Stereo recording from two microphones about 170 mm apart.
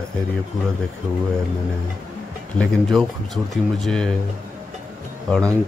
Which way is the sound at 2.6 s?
Centre (ahead or behind).